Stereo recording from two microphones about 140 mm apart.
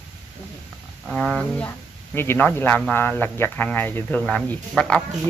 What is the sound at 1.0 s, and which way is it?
Speech, 5° left (ahead or behind).